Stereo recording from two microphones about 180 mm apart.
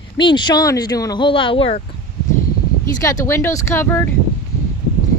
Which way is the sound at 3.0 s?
20° left (ahead or behind).